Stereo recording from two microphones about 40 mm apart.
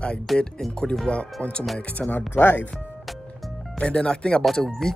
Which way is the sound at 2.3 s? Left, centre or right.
Left.